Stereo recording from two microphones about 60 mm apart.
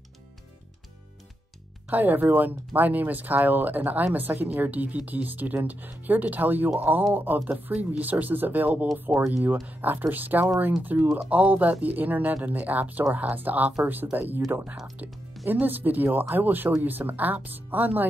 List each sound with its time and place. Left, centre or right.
1.9 s speech: right